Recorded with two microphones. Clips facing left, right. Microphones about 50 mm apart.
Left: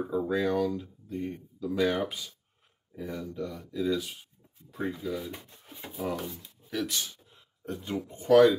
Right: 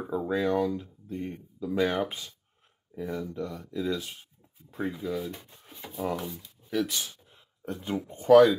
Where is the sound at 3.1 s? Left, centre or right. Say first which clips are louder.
Right 1 dB; right.